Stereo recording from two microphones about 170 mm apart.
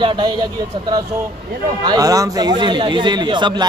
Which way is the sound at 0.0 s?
25° right (ahead or behind).